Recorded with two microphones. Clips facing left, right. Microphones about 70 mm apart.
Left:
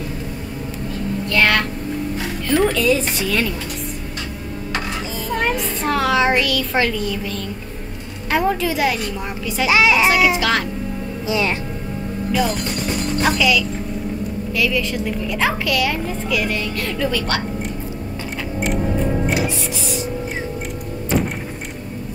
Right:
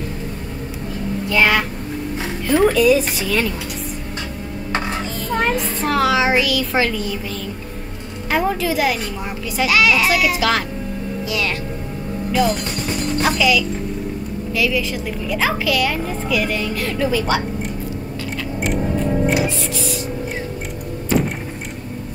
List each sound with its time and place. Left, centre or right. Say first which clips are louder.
1.3 s speech: right 1 dB; centre
5.1 s a child's voice: right 1 dB; centre
9.7 s a child's voice: left 1 dB; left
10.3 s a woman's voice: even; centre
11.2 s a child's voice: left 4 dB; left
12.3 s a woman's voice: right 2 dB; centre
19.7 s vehicle: right 1 dB; left